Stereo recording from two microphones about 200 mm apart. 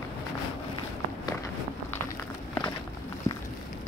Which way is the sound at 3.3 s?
15° left (ahead or behind).